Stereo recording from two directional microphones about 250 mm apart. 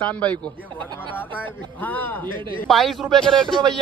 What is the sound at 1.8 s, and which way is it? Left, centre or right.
Speech, centre.